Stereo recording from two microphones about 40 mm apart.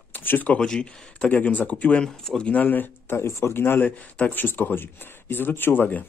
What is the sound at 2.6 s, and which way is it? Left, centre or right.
Speech, left.